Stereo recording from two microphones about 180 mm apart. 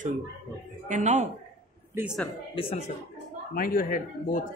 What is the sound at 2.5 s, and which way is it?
Speech, 35° left (ahead or behind).